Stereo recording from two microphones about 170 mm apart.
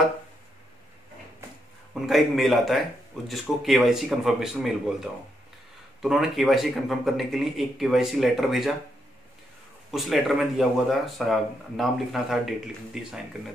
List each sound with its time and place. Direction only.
2.0 s speech: centre (ahead or behind)
6.0 s speech: centre (ahead or behind)
9.8 s speech: centre (ahead or behind)